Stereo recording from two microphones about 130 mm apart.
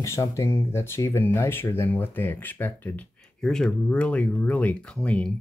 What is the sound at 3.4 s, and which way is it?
Speech, 5° left (ahead or behind).